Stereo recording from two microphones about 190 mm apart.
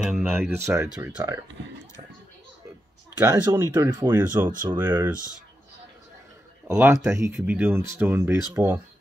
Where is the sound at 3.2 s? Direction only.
20° right (ahead or behind).